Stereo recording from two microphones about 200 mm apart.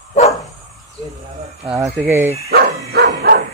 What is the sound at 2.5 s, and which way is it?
Dog, 55° right (ahead or behind).